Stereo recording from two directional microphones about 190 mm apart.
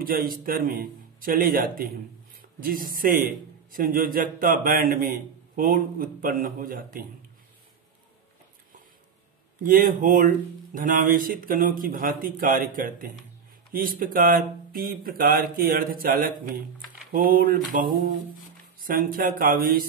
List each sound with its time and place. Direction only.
0.0 s speech: 50° right (ahead or behind)
9.6 s speech: 45° right (ahead or behind)
18.8 s speech: 50° right (ahead or behind)